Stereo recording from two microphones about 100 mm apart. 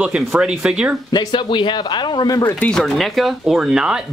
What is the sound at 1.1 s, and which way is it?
Speech, 50° left (ahead or behind).